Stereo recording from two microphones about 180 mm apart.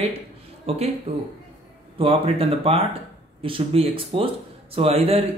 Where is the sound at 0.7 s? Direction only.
35° right (ahead or behind).